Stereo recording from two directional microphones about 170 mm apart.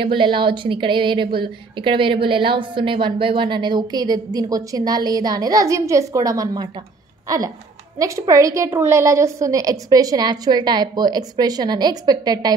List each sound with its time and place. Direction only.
0.0 s a woman's voice: 30° right (ahead or behind)